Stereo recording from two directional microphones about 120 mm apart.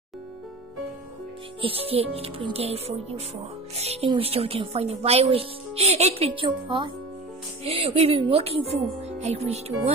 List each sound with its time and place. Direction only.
1.6 s speech: 55° right (ahead or behind)
7.6 s speech: 55° right (ahead or behind)